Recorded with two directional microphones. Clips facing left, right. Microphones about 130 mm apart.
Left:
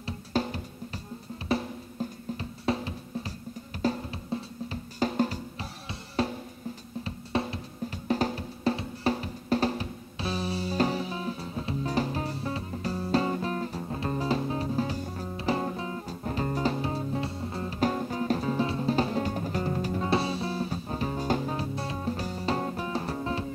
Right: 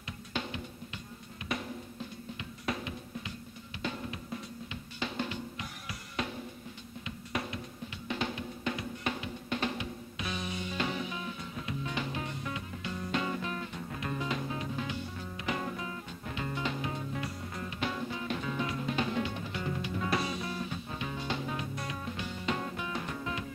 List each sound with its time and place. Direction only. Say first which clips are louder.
0.0 s music: left 9 dB; 40° left (ahead or behind)